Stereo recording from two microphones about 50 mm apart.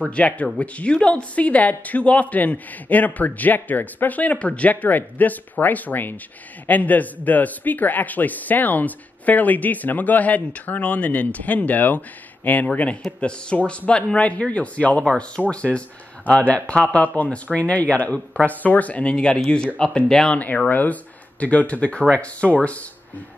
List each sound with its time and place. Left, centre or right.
0.1 s a man's voice: left; by 20.3 s centre
20.3 s speech: left